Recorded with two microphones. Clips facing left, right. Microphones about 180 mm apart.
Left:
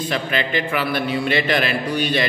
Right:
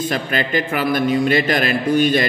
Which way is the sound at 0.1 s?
45° right (ahead or behind).